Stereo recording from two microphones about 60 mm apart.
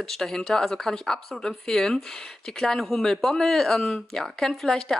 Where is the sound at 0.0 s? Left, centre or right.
Centre.